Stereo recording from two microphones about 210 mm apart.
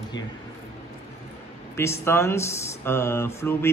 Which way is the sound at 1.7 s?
10° left (ahead or behind).